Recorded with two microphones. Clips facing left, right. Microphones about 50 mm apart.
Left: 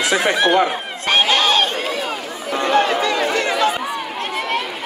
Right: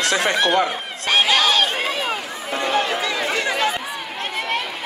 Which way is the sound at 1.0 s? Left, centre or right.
Left.